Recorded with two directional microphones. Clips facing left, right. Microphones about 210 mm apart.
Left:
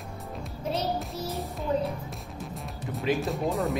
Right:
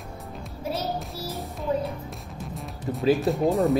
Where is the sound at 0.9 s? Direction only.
Centre (ahead or behind).